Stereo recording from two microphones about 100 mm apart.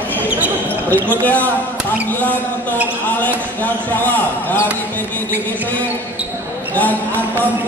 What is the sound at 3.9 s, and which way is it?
Speech, 20° left (ahead or behind).